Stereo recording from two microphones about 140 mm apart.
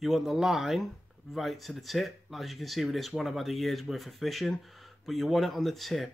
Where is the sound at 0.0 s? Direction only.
Centre (ahead or behind).